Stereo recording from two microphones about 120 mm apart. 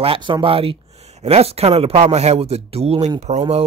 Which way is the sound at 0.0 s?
45° right (ahead or behind).